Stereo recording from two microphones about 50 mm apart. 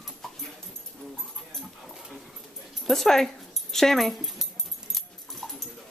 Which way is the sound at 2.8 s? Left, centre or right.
Centre.